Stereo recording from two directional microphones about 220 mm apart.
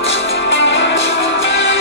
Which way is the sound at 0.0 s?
55° left (ahead or behind).